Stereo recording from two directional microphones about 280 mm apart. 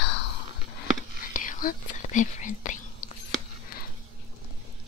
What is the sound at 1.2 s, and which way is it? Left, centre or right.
Whispering, left.